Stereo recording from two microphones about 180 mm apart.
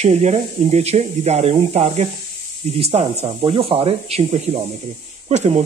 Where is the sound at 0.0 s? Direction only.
35° right (ahead or behind).